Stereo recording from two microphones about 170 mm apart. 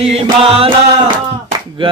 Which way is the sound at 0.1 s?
35° right (ahead or behind).